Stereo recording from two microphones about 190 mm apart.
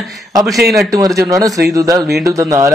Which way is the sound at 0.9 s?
20° right (ahead or behind).